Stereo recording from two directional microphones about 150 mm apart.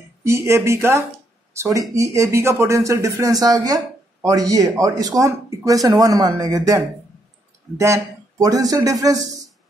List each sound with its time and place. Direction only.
0.2 s speech: 20° right (ahead or behind)